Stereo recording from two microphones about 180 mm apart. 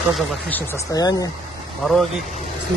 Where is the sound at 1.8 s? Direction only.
Centre (ahead or behind).